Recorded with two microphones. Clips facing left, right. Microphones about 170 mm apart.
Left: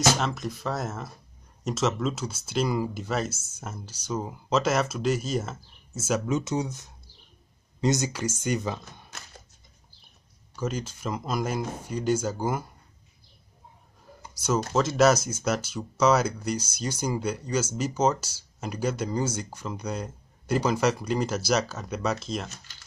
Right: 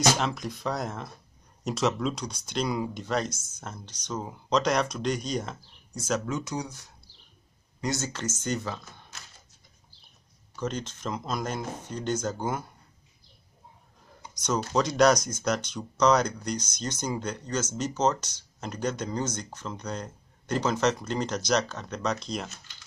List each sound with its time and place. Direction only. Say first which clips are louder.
0.1 s speech: left 1 dB; centre (ahead or behind)
6.2 s speech: left 5 dB; 20° left (ahead or behind)
10.5 s speech: left 1 dB; 10° left (ahead or behind)
14.3 s a sound: left 3 dB; 5° left (ahead or behind)
14.7 s speech: even; centre (ahead or behind)